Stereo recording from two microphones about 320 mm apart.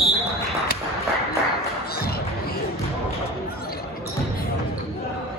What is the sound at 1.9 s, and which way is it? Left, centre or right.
Music, left.